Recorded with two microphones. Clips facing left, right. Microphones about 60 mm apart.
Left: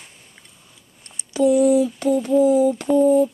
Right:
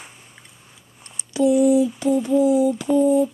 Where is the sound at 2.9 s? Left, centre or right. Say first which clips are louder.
Left 1 dB; left.